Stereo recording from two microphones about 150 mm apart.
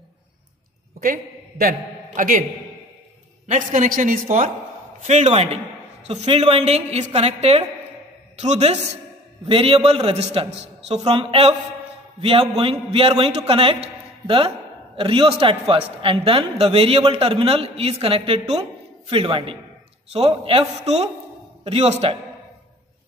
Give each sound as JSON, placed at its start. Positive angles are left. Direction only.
{"t": 1.0, "sound": "a man's voice", "side_deg": -80}
{"t": 3.4, "sound": "a woman's voice", "side_deg": -55}
{"t": 5.0, "sound": "a woman's voice", "side_deg": -50}
{"t": 9.5, "sound": "a man's voice", "side_deg": -35}